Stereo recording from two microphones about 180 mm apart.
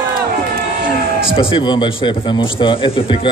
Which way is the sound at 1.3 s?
25° left (ahead or behind).